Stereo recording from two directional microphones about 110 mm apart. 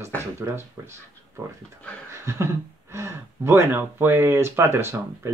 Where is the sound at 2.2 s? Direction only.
25° right (ahead or behind).